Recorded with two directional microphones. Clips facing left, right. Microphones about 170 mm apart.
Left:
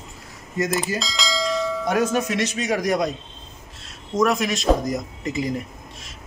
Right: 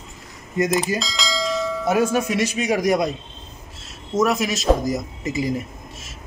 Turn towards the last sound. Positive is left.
turn(degrees=0)  # may be behind; listen again after turning